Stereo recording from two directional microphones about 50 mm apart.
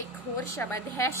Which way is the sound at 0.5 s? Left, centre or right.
Left.